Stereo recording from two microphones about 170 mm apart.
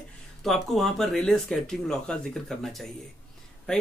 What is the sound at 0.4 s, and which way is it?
Speech, centre (ahead or behind).